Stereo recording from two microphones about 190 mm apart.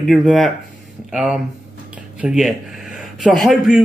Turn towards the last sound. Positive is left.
turn(degrees=0)  # may be behind; listen again after turning